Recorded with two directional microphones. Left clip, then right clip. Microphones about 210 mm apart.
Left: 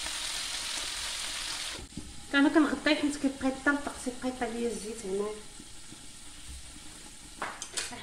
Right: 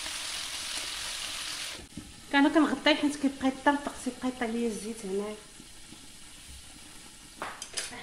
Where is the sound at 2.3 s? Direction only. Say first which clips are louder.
Right 1 dB; 45° right (ahead or behind).